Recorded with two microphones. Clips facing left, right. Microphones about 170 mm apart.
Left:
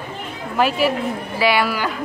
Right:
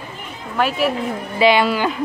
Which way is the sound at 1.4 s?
20° right (ahead or behind).